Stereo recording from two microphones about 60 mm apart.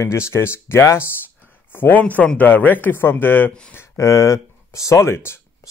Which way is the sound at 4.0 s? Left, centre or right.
Left.